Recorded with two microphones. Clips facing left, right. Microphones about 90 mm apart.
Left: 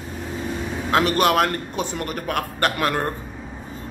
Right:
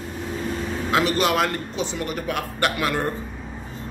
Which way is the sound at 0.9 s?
50° left (ahead or behind).